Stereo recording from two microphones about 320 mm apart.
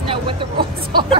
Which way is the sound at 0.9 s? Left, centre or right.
Centre.